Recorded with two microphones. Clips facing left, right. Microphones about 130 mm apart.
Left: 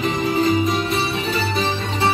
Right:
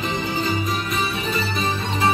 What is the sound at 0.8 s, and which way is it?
Music, 30° left (ahead or behind).